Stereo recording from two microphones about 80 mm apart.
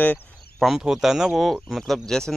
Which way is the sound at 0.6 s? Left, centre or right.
Centre.